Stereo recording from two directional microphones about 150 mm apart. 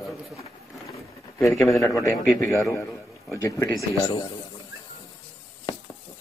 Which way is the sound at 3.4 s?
20° left (ahead or behind).